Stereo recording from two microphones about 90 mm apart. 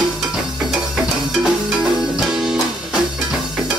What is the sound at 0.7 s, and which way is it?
Music, 5° right (ahead or behind).